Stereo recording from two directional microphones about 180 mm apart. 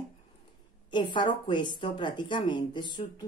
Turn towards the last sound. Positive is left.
turn(degrees=25)  # may be behind; listen again after turning